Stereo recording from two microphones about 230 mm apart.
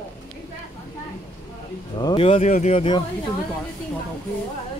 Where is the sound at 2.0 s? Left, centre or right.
Left.